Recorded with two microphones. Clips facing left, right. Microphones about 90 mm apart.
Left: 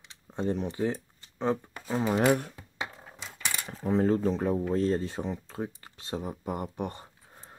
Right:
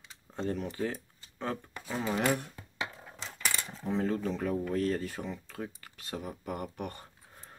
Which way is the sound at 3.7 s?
45° left (ahead or behind).